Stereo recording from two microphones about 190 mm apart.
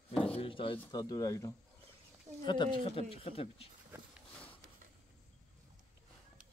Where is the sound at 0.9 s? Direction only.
20° left (ahead or behind).